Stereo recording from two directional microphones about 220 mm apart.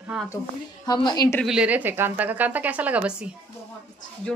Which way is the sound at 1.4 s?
5° right (ahead or behind).